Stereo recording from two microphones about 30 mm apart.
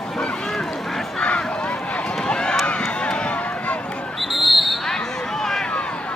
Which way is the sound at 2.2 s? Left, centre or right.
Left.